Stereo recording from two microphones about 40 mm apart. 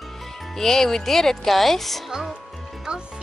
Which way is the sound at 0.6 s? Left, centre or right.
Centre.